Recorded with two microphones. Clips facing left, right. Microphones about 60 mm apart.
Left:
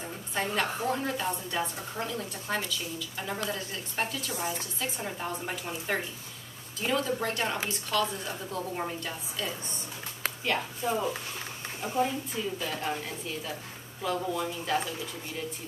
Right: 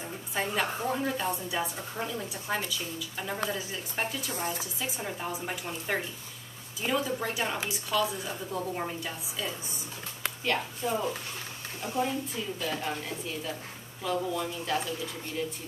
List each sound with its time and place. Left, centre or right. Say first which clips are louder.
0.0 s a woman's voice: even; centre